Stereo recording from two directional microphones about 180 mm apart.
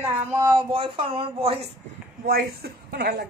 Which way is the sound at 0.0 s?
15° right (ahead or behind).